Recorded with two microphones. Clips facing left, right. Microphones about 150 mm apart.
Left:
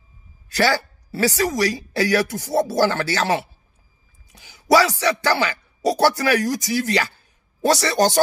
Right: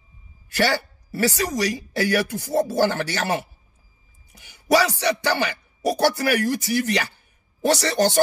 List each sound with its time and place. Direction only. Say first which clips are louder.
0.6 s speech: left 2 dB; 90° left